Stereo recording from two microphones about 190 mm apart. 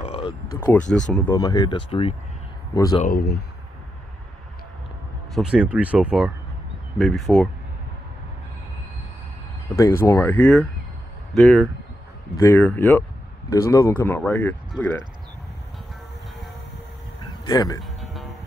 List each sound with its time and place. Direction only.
0.0 s a sound: 30° left (ahead or behind)
0.6 s speech: 10° left (ahead or behind)
1.3 s speech: 20° left (ahead or behind)
2.7 s speech: 20° left (ahead or behind)
3.0 s speech: 50° left (ahead or behind)
5.3 s speech: 5° right (ahead or behind)
9.8 s speech: 15° left (ahead or behind)
17.5 s speech: 20° left (ahead or behind)